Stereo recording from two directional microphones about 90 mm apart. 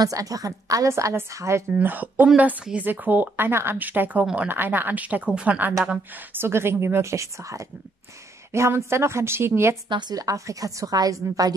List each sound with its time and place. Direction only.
0.0 s a woman's voice: 40° right (ahead or behind)
1.7 s a woman's voice: 20° right (ahead or behind)
9.8 s a woman's voice: 55° right (ahead or behind)